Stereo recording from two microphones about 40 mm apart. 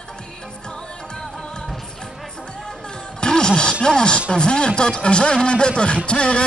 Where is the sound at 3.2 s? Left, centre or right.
Centre.